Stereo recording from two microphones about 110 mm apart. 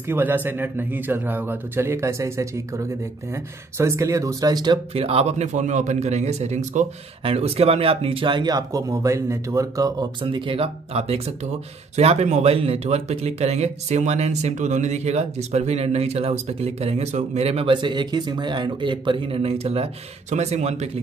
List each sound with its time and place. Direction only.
0.0 s a man's voice: 20° right (ahead or behind); by 4.7 s 35° right (ahead or behind)
4.9 s a man's voice: 65° right (ahead or behind); by 10.0 s 35° right (ahead or behind)
10.2 s a man's voice: 50° right (ahead or behind)
17.7 s a man's voice: 45° right (ahead or behind); by 21.0 s 85° right